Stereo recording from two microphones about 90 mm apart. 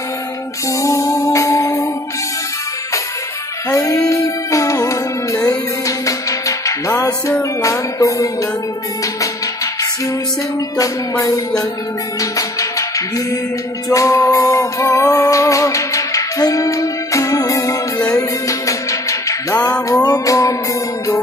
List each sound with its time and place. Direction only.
0.8 s music: 35° left (ahead or behind)
3.7 s music: 40° left (ahead or behind)
10.8 s music: 40° left (ahead or behind)